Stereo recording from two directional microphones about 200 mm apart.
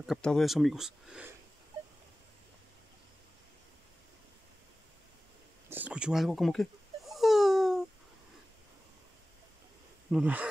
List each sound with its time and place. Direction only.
0.0 s speech: centre (ahead or behind)
5.7 s a sound: 10° right (ahead or behind)
10.1 s speech: 5° right (ahead or behind)